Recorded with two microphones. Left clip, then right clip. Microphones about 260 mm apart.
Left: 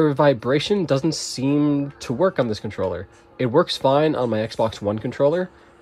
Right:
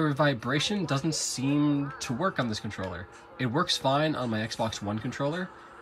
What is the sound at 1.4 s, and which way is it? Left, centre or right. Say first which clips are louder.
Speech: left 8 dB; centre.